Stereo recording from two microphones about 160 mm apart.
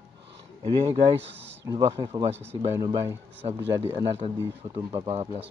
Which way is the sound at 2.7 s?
20° right (ahead or behind).